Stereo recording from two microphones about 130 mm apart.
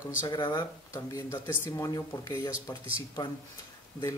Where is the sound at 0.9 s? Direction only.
25° left (ahead or behind).